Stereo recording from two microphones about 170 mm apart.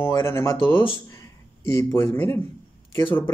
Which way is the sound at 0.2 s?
15° left (ahead or behind).